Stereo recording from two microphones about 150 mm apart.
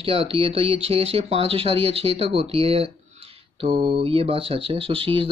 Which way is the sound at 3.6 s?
30° right (ahead or behind).